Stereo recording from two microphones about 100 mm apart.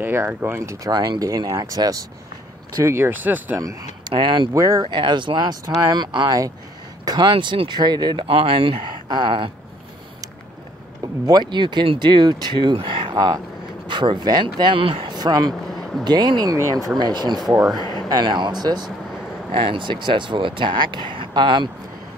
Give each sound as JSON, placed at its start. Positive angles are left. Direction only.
{"t": 0.0, "sound": "speech", "side_deg": -20}
{"t": 0.9, "sound": "speech", "side_deg": -45}
{"t": 4.1, "sound": "speech", "side_deg": -50}
{"t": 4.6, "sound": "speech", "side_deg": -35}
{"t": 4.8, "sound": "speech", "side_deg": -50}
{"t": 8.3, "sound": "speech", "side_deg": -65}
{"t": 11.2, "sound": "speech", "side_deg": -45}
{"t": 15.1, "sound": "speech", "side_deg": -45}
{"t": 15.7, "sound": "vehicle", "side_deg": 5}
{"t": 16.0, "sound": "speech", "side_deg": -45}
{"t": 17.7, "sound": "a sound", "side_deg": 40}
{"t": 18.0, "sound": "speech", "side_deg": -45}
{"t": 19.5, "sound": "speech", "side_deg": -60}